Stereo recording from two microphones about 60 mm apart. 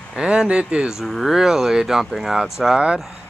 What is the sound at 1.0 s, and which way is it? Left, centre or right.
Speech, centre.